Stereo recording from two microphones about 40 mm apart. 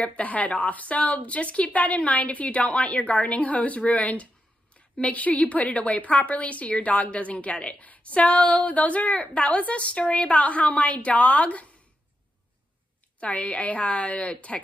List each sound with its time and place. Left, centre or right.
0.0 s a woman's voice: left
13.2 s a woman's voice: left